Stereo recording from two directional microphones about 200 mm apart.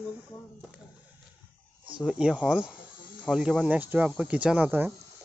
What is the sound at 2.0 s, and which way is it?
Speech, 5° right (ahead or behind).